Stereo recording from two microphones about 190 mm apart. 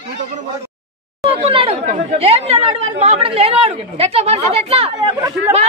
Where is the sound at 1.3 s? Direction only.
30° right (ahead or behind).